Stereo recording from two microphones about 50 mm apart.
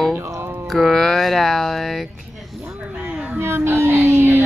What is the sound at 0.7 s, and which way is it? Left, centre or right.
Speech, centre.